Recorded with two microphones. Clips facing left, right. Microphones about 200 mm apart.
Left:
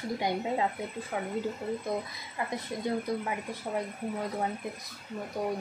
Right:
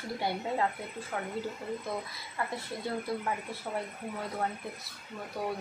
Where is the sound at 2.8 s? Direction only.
15° left (ahead or behind).